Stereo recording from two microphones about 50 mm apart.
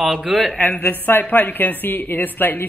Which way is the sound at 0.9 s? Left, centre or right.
Left.